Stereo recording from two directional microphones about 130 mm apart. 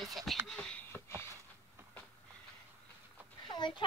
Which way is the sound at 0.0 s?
Centre (ahead or behind).